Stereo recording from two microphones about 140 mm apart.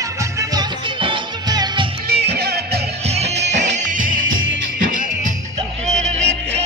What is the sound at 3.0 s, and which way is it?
Music, 50° right (ahead or behind).